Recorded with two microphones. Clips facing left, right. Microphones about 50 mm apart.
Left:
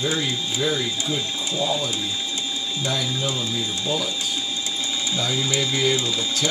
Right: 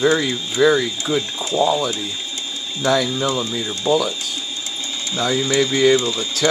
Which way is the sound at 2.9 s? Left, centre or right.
Right.